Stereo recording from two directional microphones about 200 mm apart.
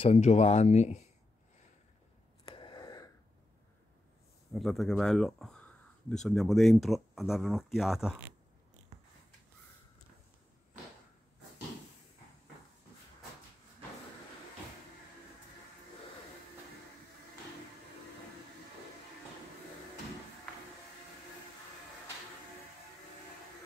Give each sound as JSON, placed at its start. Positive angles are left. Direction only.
{"t": 0.0, "sound": "speech", "side_deg": 30}
{"t": 2.4, "sound": "gasp", "side_deg": 25}
{"t": 4.6, "sound": "speech", "side_deg": 0}